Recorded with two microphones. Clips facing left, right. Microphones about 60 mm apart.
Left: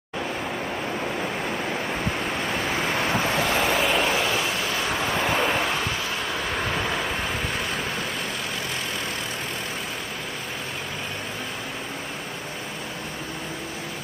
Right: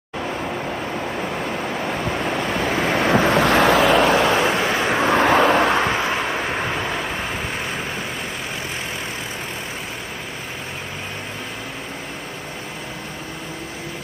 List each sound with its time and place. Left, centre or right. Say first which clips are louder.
2.2 s vehicle: right 5 dB; right
4.7 s vehicle: right 6 dB; right
5.0 s vehicle: right 9 dB; right